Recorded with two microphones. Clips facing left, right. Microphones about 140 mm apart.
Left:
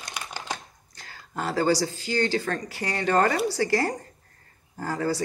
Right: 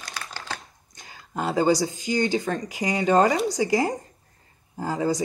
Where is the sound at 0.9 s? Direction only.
15° right (ahead or behind).